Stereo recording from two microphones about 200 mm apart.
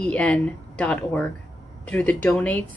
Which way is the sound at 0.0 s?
5° left (ahead or behind).